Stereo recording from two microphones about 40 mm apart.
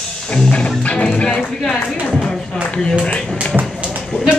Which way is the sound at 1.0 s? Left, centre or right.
Left.